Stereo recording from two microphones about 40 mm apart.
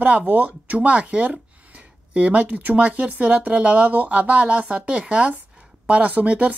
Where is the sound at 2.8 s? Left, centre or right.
Right.